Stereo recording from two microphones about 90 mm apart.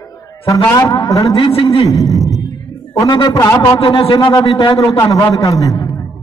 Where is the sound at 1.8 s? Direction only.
40° left (ahead or behind).